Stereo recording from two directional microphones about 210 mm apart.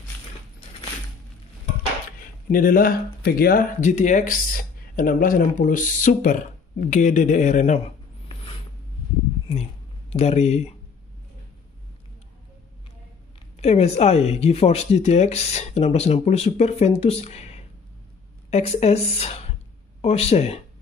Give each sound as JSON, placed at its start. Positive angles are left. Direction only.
{"t": 2.5, "sound": "speech", "side_deg": 40}
{"t": 9.5, "sound": "speech", "side_deg": 30}
{"t": 13.6, "sound": "speech", "side_deg": 30}